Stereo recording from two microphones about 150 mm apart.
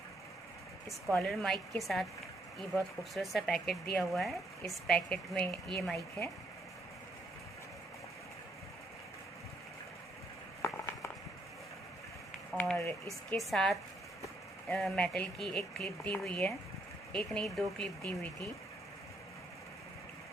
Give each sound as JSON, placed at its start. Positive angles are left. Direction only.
{"t": 1.1, "sound": "speech", "side_deg": 5}
{"t": 10.6, "sound": "a sound", "side_deg": 20}
{"t": 12.5, "sound": "speech", "side_deg": 15}
{"t": 13.4, "sound": "speech", "side_deg": 0}